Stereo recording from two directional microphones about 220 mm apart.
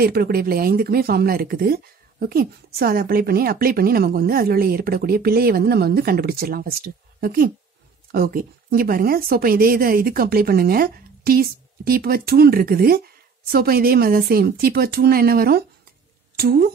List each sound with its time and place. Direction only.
0.0 s speech: 45° right (ahead or behind)